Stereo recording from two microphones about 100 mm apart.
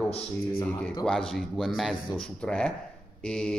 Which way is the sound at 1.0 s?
5° left (ahead or behind).